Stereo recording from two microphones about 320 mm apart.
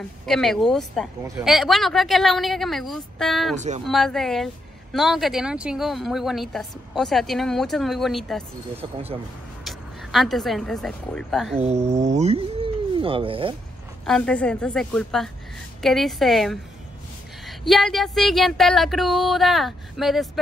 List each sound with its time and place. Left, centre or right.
0.3 s a woman's voice: centre
3.5 s speech: right
3.8 s a woman's voice: centre
8.8 s speech: centre
9.7 s a woman's voice: centre
11.5 s speech: centre
14.0 s a woman's voice: centre